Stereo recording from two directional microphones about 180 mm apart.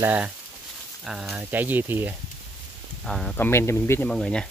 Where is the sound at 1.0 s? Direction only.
Centre (ahead or behind).